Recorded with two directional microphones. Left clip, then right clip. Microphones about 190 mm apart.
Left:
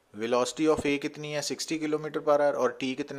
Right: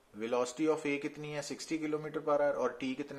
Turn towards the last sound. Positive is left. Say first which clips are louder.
# left 7 dB
turn(degrees=45)  # may be behind; listen again after turning